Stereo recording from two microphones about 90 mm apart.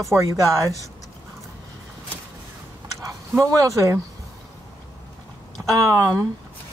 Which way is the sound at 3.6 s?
35° right (ahead or behind).